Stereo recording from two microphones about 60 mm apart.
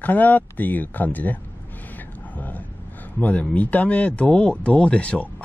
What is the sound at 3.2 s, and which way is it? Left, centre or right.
A man's voice, left.